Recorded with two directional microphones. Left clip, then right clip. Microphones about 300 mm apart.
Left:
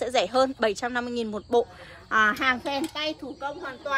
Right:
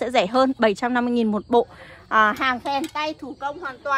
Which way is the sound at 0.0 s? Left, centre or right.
Centre.